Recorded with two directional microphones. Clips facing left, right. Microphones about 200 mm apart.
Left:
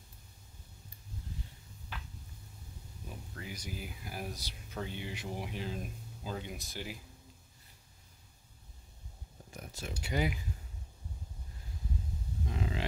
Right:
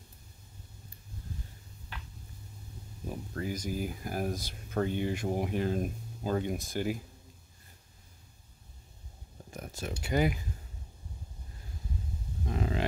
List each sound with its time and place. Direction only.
3.1 s speech: 45° right (ahead or behind)
9.5 s speech: 50° right (ahead or behind)
12.4 s a sound: 50° right (ahead or behind)